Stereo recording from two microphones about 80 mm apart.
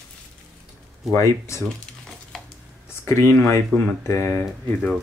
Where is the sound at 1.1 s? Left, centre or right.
Left.